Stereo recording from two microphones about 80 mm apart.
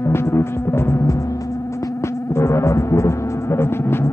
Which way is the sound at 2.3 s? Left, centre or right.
Left.